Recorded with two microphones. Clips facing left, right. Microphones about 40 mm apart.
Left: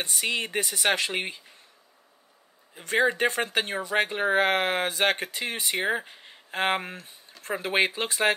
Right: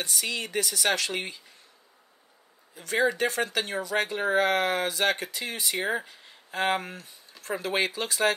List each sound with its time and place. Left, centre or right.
0.0 s speech: left
2.7 s speech: left